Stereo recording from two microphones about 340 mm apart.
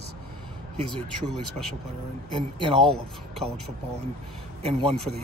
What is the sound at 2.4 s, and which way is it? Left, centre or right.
Speech, centre.